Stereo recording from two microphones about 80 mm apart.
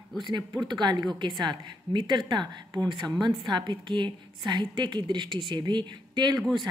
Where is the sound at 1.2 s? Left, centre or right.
Right.